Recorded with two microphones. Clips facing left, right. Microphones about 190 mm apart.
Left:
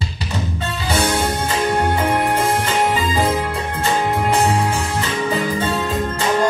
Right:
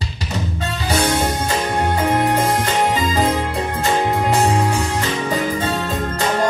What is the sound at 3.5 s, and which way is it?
Music, 40° right (ahead or behind).